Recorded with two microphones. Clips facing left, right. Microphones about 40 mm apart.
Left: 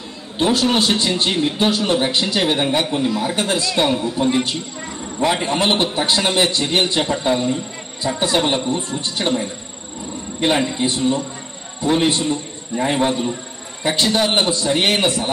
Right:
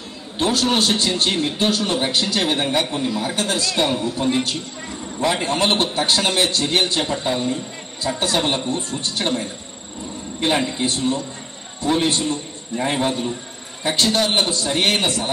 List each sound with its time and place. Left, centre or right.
0.4 s a man's voice: centre
3.1 s speech: centre
3.3 s a man's voice: centre
3.6 s a man's voice: centre
7.1 s a man's voice: centre
8.0 s a man's voice: centre